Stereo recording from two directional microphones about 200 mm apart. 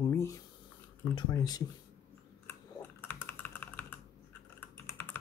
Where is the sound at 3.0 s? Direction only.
10° left (ahead or behind).